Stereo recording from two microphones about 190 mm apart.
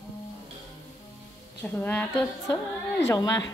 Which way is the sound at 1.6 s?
10° left (ahead or behind).